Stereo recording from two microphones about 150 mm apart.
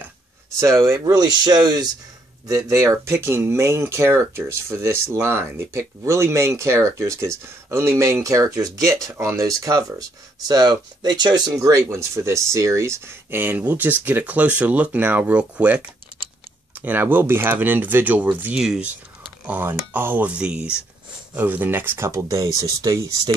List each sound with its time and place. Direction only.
0.6 s speech: 20° right (ahead or behind)